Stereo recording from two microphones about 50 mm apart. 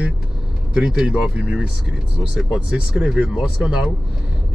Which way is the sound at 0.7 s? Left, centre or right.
Centre.